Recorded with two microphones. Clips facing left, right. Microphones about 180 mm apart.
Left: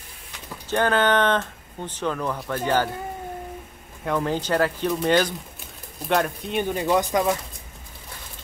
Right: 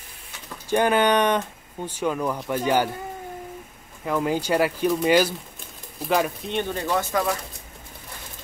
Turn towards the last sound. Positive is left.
turn(degrees=20)  # may be behind; listen again after turning